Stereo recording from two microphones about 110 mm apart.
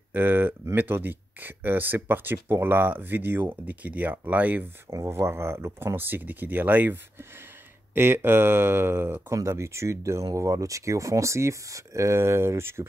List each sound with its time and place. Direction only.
0.1 s speech: 20° right (ahead or behind)